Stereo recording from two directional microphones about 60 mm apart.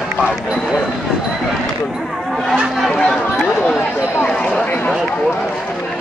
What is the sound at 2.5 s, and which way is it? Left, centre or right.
Speech, centre.